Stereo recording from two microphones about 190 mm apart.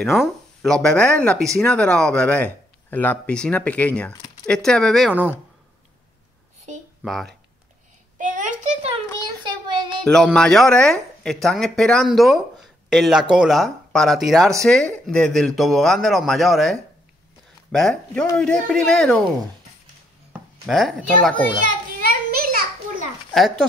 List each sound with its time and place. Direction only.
0.0 s speech: centre (ahead or behind)
7.0 s speech: centre (ahead or behind)
8.2 s a sound: 45° right (ahead or behind)
9.4 s child singing: 25° right (ahead or behind)
10.0 s speech: 5° left (ahead or behind)
20.6 s speech: centre (ahead or behind)
22.0 s children playing: 50° right (ahead or behind)